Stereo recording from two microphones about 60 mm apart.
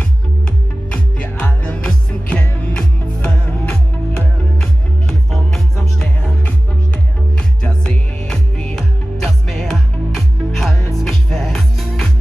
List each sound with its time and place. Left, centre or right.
1.1 s music: centre
4.6 s music: centre